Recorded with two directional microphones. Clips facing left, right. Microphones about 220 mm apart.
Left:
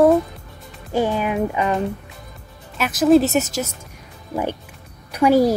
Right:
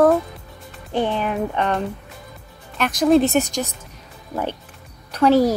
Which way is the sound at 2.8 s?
5° left (ahead or behind).